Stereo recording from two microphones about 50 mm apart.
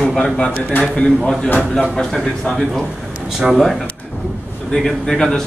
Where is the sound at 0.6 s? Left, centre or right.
Left.